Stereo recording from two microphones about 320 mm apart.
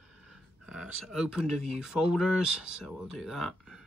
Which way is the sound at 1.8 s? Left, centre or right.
Centre.